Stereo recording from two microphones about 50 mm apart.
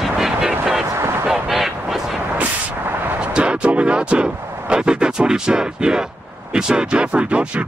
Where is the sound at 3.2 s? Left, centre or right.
Right.